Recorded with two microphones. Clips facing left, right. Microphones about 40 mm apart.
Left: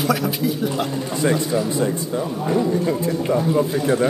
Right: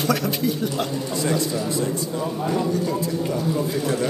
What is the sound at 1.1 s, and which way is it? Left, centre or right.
A man's voice, left.